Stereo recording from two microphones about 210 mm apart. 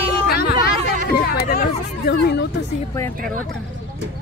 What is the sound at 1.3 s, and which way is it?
Speech, 45° left (ahead or behind).